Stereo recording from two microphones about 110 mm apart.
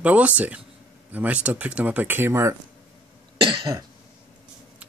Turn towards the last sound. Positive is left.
turn(degrees=-50)  # may be behind; listen again after turning